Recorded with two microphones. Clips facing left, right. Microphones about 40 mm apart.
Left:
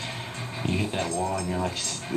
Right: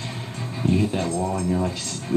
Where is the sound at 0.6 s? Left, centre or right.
Left.